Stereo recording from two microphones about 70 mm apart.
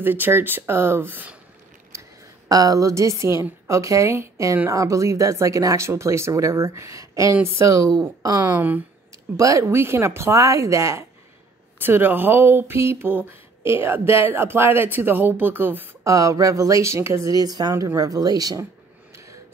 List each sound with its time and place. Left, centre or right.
0.0 s speech: right
1.9 s a woman's voice: right
8.5 s speech: right
9.4 s speech: right
11.8 s speech: right
16.0 s speech: right
17.3 s speech: right
17.7 s speech: right